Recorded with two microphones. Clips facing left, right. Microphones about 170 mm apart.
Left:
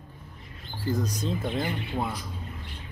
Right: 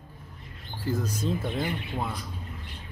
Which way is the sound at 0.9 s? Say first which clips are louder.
Even; 5° right (ahead or behind).